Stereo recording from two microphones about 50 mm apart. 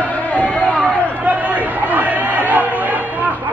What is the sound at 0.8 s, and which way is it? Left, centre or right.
Chatter, right.